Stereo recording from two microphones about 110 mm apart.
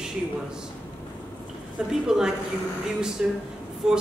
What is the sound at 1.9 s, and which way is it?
A woman's voice, 5° right (ahead or behind).